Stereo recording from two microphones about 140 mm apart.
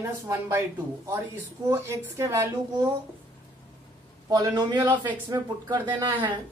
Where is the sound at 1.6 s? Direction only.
20° right (ahead or behind).